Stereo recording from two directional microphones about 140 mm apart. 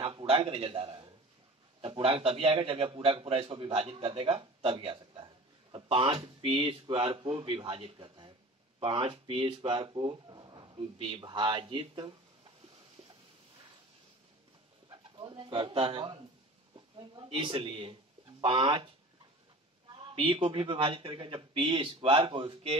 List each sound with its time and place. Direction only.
0.0 s a man's voice: 40° right (ahead or behind)
14.9 s a man's voice: 35° right (ahead or behind)
19.9 s a man's voice: 40° right (ahead or behind)